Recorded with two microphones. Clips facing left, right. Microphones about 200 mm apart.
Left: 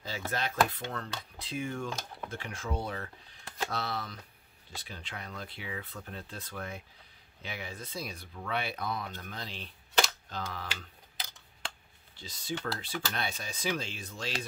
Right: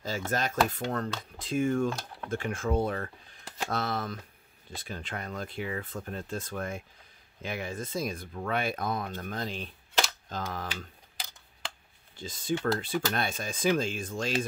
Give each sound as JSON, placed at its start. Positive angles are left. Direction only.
{"t": 0.0, "sound": "speech", "side_deg": -45}
{"t": 12.2, "sound": "speech", "side_deg": -50}